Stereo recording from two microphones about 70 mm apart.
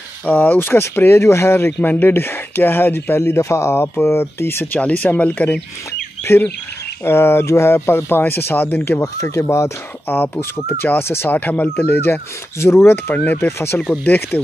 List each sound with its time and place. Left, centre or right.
0.2 s speech: left
1.8 s speech: left
4.7 s speech: centre
6.2 s speech: left
9.0 s speech: left
10.1 s speech: left
13.5 s speech: left
14.0 s speech: left